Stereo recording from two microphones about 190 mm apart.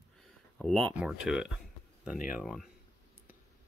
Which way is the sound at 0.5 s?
Centre (ahead or behind).